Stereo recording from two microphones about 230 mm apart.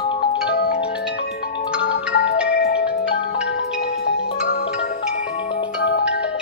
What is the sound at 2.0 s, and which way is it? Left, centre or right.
Music, left.